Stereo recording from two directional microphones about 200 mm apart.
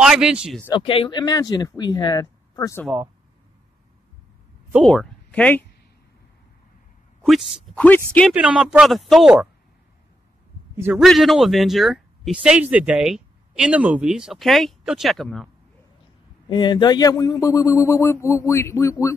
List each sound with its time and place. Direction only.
0.0 s speech: 5° right (ahead or behind)
0.7 s speech: 25° left (ahead or behind)
4.7 s speech: centre (ahead or behind)
7.2 s speech: centre (ahead or behind)
8.3 s speech: 5° right (ahead or behind)
10.8 s speech: 5° right (ahead or behind)
16.4 s speech: 20° left (ahead or behind)